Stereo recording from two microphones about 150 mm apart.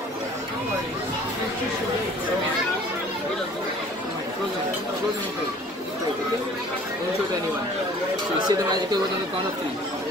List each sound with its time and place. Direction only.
8.5 s speech: 25° right (ahead or behind)